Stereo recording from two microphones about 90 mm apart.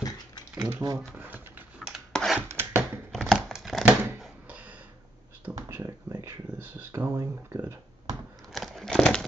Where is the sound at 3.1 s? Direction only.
Centre (ahead or behind).